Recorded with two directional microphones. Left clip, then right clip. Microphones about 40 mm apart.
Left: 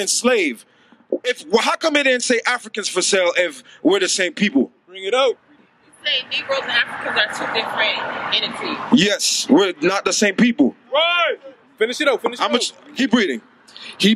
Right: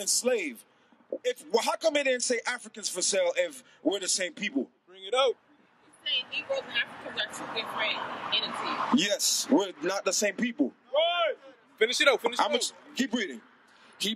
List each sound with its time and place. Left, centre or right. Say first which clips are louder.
0.0 s a man's voice: left 11 dB; left
4.9 s speech: left 9 dB; centre
6.0 s speech: left 10 dB; left
11.8 s a man's voice: left 6 dB; centre
12.4 s speech: left 8 dB; left